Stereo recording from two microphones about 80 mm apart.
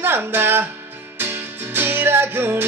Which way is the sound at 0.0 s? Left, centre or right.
Right.